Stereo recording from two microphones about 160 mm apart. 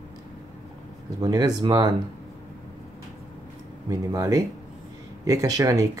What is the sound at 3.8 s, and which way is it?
Speech, 20° right (ahead or behind).